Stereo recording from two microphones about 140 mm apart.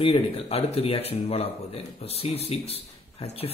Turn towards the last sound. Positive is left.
turn(degrees=45)  # may be behind; listen again after turning